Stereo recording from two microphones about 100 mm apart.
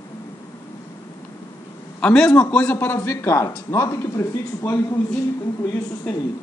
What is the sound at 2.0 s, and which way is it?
A man's voice, 10° left (ahead or behind).